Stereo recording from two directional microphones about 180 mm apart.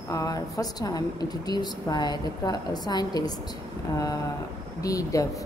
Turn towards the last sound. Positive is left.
turn(degrees=20)  # may be behind; listen again after turning